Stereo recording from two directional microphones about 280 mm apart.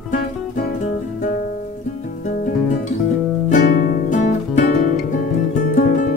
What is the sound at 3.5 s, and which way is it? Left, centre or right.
Music, left.